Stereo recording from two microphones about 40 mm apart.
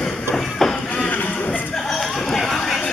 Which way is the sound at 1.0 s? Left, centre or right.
Left.